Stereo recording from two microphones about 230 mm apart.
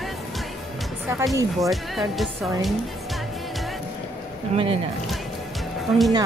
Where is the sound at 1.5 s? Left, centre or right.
Centre.